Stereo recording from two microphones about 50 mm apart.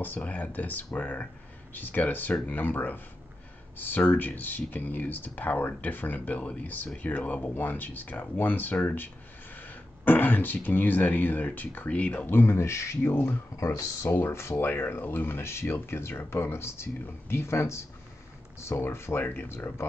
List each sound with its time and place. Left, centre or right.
0.0 s speech: left
12.3 s speech: left
13.7 s speech: left
18.8 s speech: left